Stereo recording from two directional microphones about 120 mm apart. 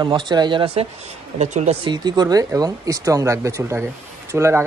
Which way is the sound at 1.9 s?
35° right (ahead or behind).